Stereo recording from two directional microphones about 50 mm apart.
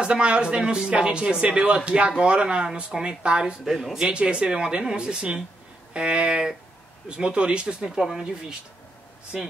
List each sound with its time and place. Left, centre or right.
0.0 s speech: right
3.6 s speech: centre
4.1 s speech: right